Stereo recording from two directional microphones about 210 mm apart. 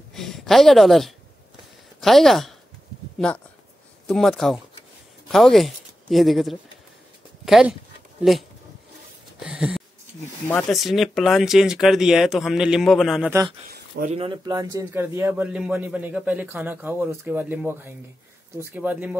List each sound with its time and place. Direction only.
0.1 s speech: centre (ahead or behind)
4.1 s speech: centre (ahead or behind)
9.4 s a sound: 5° right (ahead or behind)
10.5 s speech: centre (ahead or behind)
13.7 s a sound: 45° right (ahead or behind)
14.1 s a man's voice: 25° right (ahead or behind); by 19.1 s 5° right (ahead or behind)